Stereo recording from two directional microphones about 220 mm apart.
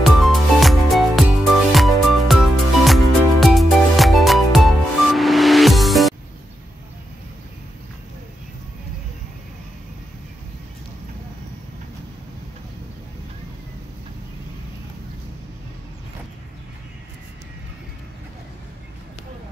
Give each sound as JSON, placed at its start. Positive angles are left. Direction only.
{"t": 0.0, "sound": "music", "side_deg": 0}